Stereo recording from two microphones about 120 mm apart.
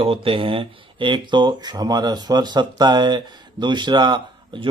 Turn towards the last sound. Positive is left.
turn(degrees=-40)  # may be behind; listen again after turning